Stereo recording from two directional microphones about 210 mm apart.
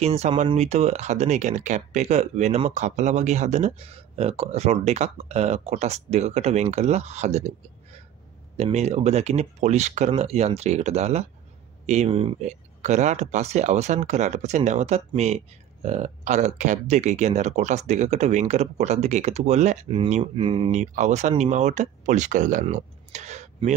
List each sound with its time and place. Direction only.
0.0 s speech: 30° right (ahead or behind)